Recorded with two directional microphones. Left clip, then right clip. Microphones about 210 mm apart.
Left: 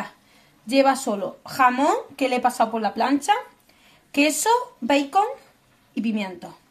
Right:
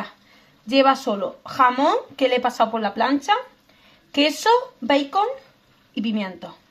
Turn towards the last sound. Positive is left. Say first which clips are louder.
# right 1 dB
turn(degrees=0)  # may be behind; listen again after turning